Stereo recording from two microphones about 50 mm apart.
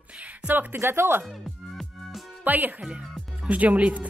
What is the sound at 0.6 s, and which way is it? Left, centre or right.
Speech, right.